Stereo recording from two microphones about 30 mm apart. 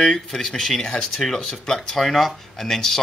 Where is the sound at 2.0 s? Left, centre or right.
Centre.